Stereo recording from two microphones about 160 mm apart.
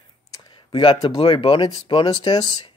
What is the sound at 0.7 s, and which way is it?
Speech, 30° left (ahead or behind).